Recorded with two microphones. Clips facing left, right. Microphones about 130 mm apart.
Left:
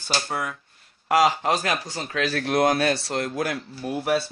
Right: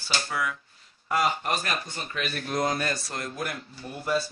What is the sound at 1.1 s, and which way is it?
Speech, 90° left.